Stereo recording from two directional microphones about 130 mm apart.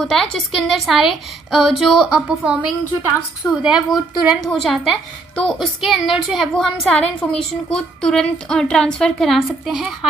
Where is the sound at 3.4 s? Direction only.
25° left (ahead or behind).